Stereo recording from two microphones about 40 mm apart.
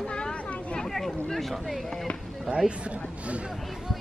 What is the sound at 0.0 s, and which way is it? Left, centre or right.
Chatter, left.